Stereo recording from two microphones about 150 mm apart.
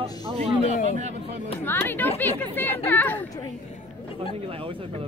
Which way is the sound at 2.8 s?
10° left (ahead or behind).